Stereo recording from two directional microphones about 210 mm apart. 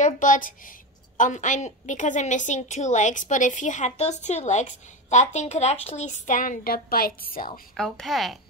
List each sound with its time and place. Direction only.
0.0 s a woman's voice: 40° left (ahead or behind)
7.7 s a woman's voice: centre (ahead or behind)